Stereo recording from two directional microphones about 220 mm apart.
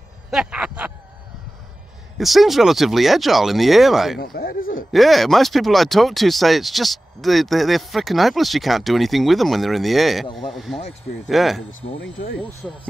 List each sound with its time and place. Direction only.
0.3 s a sound: 5° right (ahead or behind)
2.1 s speech: centre (ahead or behind)
4.2 s speech: 45° left (ahead or behind)
4.9 s speech: centre (ahead or behind)
12.0 s speech: 55° left (ahead or behind)
12.6 s speech: centre (ahead or behind)